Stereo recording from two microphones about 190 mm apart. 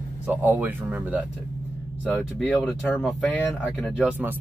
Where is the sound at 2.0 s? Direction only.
5° left (ahead or behind).